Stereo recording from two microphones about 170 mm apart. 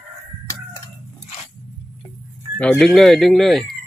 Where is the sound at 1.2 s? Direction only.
35° left (ahead or behind).